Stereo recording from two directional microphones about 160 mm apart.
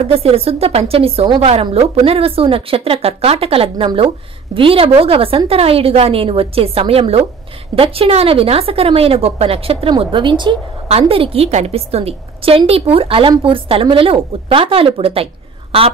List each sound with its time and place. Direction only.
0.0 s speech: 35° right (ahead or behind)